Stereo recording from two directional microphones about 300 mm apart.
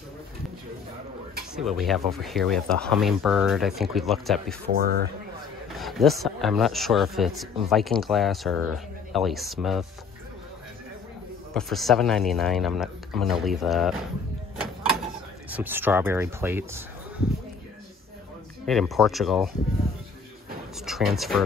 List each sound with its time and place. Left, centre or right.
1.5 s speech: centre
4.7 s speech: right
5.7 s a sound: centre
6.2 s speech: centre
11.5 s speech: centre
15.5 s speech: centre
18.7 s speech: centre
20.8 s speech: centre